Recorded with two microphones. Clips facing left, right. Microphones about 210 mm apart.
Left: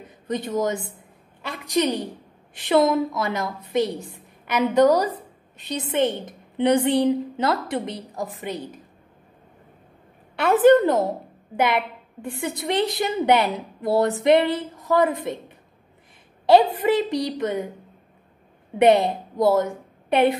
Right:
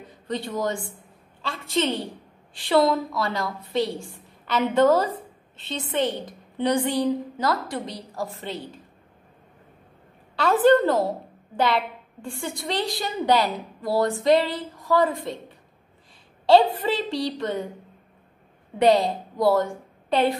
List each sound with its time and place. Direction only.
0.3 s a woman's voice: 20° left (ahead or behind)
10.3 s a woman's voice: 20° left (ahead or behind)
16.4 s a woman's voice: 20° left (ahead or behind)
18.8 s a woman's voice: 25° left (ahead or behind)